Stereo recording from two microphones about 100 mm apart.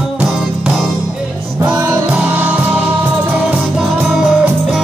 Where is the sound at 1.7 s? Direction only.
15° right (ahead or behind).